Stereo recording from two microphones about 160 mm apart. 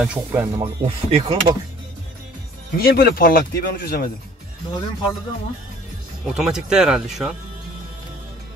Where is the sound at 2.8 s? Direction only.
70° left (ahead or behind).